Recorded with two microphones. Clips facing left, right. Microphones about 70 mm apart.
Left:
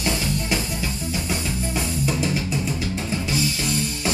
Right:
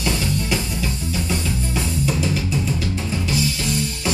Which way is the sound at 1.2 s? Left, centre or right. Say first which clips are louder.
Right 2 dB; centre.